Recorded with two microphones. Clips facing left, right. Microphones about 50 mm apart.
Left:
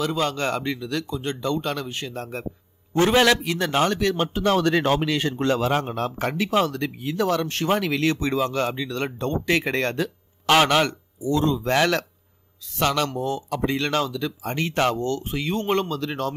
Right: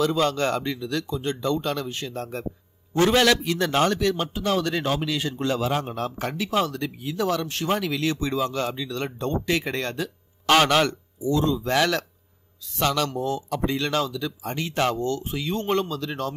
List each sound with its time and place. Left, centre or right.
0.0 s speech: left
3.1 s a man's voice: centre
3.4 s speech: left